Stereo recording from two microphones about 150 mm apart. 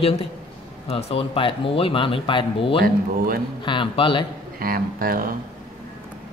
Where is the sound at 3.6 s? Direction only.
35° left (ahead or behind).